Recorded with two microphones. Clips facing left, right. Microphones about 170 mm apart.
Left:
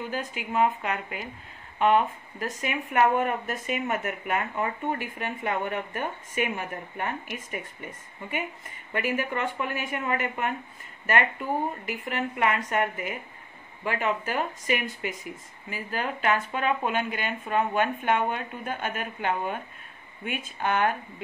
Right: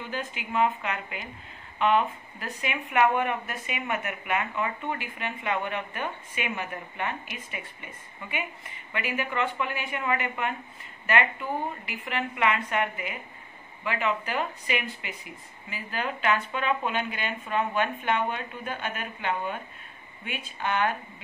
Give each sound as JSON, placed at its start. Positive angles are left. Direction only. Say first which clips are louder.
{"t": 0.1, "sound": "a woman's voice", "louder": "right 2 dB", "side_deg": 40}
{"t": 11.8, "sound": "speech", "louder": "left 2 dB", "side_deg": 45}